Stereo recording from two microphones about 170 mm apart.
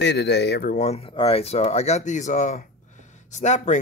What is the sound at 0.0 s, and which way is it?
Speech, 90° left.